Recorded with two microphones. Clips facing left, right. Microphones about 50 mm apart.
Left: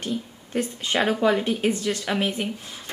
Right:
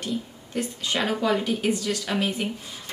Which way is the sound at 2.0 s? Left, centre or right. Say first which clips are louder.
Left 1 dB; centre.